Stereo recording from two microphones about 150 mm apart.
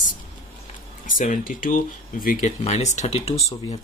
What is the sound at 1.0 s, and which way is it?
Speech, 60° left (ahead or behind).